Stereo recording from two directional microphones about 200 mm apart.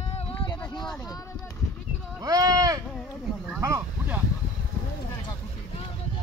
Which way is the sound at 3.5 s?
15° right (ahead or behind).